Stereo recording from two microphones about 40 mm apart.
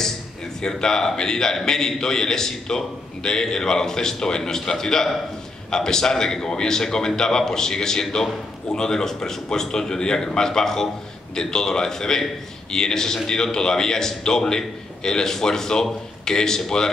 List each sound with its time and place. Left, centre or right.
0.6 s a man's voice: centre